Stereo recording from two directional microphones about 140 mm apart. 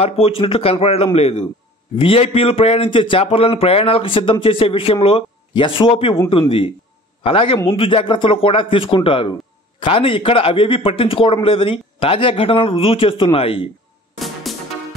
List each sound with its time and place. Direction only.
0.0 s a man's voice: 45° left (ahead or behind)
7.2 s a man's voice: 40° left (ahead or behind)
14.1 s music: centre (ahead or behind)